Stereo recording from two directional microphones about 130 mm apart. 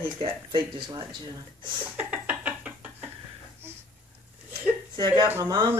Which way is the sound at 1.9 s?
10° right (ahead or behind).